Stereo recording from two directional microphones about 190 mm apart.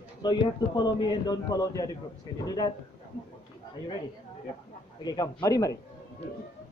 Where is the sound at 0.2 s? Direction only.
20° left (ahead or behind).